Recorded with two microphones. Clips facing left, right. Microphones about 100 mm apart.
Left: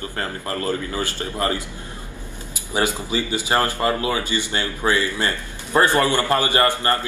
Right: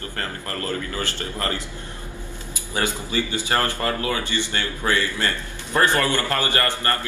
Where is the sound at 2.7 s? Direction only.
20° left (ahead or behind).